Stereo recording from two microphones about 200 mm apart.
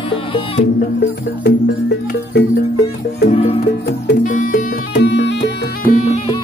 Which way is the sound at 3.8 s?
45° left (ahead or behind).